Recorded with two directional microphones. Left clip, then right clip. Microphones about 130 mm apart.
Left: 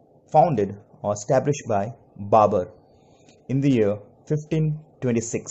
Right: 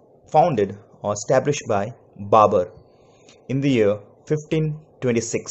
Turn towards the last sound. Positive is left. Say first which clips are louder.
# right 3 dB
turn(degrees=15)  # may be behind; listen again after turning